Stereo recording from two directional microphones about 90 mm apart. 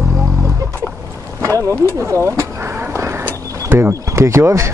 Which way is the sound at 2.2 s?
30° right (ahead or behind).